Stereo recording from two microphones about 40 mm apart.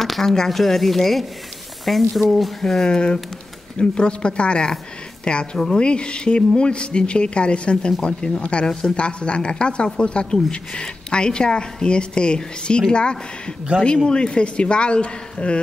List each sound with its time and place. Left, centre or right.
0.0 s speech: centre
2.6 s a woman's voice: centre